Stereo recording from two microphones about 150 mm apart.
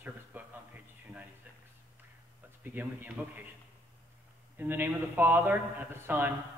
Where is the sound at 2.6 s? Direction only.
10° right (ahead or behind).